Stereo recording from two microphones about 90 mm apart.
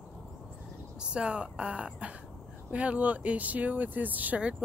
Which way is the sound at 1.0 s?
10° right (ahead or behind).